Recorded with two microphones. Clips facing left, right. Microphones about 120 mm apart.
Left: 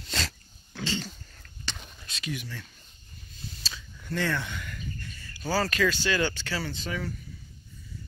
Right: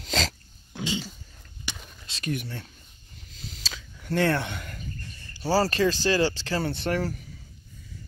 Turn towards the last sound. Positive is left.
turn(degrees=-65)  # may be behind; listen again after turning